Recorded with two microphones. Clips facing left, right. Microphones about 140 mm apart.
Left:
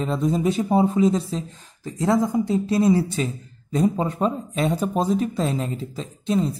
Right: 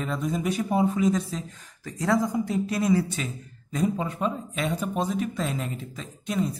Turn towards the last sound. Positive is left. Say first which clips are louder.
# left 5 dB
turn(degrees=30)  # may be behind; listen again after turning